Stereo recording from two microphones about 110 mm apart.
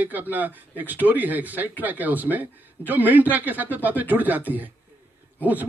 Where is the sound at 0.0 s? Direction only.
15° right (ahead or behind).